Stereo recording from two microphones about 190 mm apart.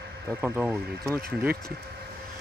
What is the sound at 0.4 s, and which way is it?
Speech, 10° right (ahead or behind).